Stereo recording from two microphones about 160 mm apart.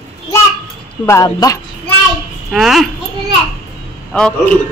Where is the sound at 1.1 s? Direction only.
20° left (ahead or behind).